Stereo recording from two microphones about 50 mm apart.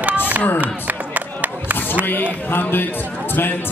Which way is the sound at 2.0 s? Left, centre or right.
Left.